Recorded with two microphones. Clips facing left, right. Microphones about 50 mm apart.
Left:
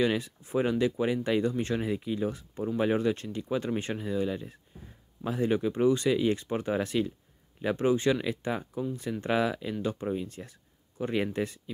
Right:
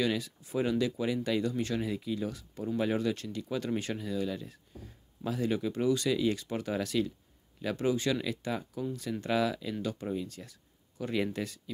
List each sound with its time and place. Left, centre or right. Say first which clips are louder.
0.0 s speech: left 4 dB; left